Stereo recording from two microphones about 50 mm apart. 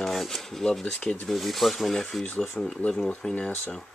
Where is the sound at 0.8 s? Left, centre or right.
Left.